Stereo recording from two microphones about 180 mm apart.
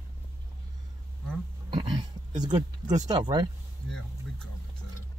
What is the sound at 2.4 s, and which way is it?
Speech, 20° right (ahead or behind).